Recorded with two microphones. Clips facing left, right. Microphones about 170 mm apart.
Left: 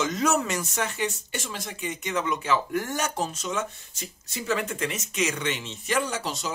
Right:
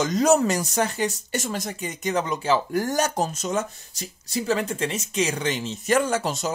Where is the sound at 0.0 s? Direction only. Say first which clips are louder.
Right 6 dB; 35° right (ahead or behind).